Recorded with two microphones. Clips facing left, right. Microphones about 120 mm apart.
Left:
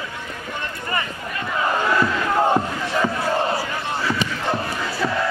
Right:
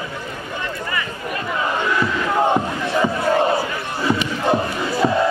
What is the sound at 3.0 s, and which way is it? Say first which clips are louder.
Crowd: right 5 dB; 15° right (ahead or behind).